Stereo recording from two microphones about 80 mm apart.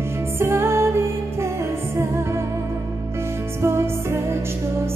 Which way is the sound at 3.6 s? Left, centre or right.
Right.